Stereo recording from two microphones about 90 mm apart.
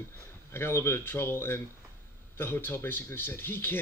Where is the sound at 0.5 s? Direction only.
30° left (ahead or behind).